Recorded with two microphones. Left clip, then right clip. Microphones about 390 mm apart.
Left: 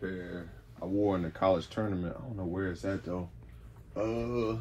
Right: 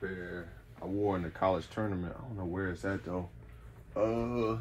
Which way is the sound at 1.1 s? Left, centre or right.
Centre.